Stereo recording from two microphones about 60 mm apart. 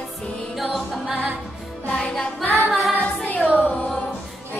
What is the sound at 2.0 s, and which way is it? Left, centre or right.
Music, centre.